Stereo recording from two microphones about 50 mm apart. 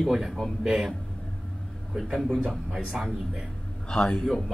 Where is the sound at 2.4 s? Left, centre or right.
Centre.